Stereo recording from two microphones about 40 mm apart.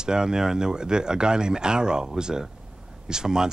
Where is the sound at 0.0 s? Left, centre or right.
Centre.